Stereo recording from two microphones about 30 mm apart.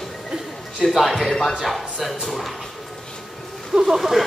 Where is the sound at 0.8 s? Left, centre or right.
Centre.